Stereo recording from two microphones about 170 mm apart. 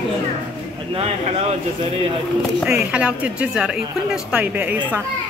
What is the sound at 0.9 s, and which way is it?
Speech, 35° right (ahead or behind).